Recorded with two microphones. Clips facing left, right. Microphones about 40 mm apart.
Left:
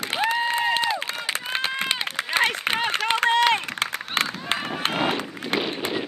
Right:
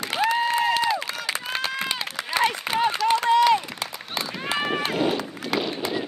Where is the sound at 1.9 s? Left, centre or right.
Left.